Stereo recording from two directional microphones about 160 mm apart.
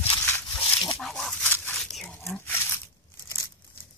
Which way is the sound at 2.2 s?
15° left (ahead or behind).